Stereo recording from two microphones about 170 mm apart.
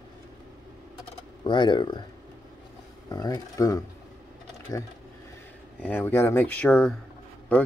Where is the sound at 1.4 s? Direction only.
25° left (ahead or behind).